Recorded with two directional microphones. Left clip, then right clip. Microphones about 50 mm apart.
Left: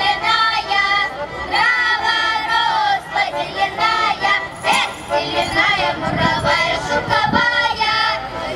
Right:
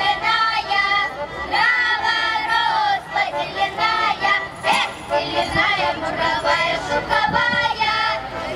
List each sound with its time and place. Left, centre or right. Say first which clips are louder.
0.0 s music: left 2 dB; centre
1.5 s choir: left 2 dB; centre